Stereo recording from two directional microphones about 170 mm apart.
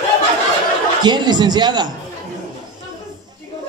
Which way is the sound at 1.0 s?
25° right (ahead or behind).